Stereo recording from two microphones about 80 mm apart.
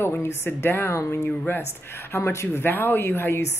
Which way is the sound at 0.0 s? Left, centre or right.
Left.